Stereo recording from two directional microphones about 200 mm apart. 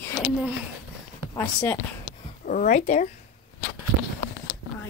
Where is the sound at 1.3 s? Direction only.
10° left (ahead or behind).